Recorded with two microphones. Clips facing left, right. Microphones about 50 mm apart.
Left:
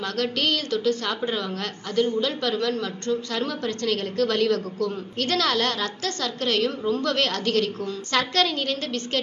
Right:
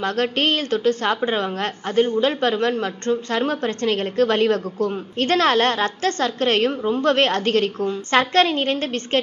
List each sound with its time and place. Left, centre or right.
0.0 s a woman's voice: right